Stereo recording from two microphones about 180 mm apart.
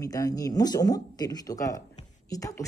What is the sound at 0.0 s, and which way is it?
A woman's voice, 20° left (ahead or behind).